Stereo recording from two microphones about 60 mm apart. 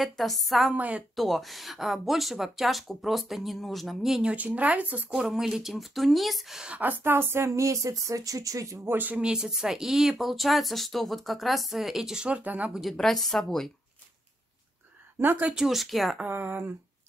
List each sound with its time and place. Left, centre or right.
0.0 s speech: centre
0.7 s speech: right
1.1 s speech: centre
4.3 s speech: right
5.1 s speech: centre
6.7 s a woman's voice: right
7.4 s speech: right
8.8 s a woman's voice: right
9.1 s speech: centre
12.8 s a woman's voice: centre
15.1 s a woman's voice: right
15.5 s speech: centre
16.2 s speech: right